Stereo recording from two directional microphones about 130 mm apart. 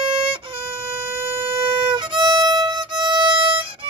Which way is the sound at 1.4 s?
45° right (ahead or behind).